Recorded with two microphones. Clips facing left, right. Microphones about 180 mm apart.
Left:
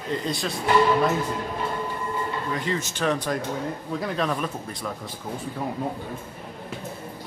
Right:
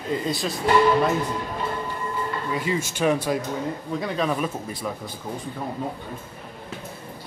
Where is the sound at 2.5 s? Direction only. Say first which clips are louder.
Right 2 dB; 10° right (ahead or behind).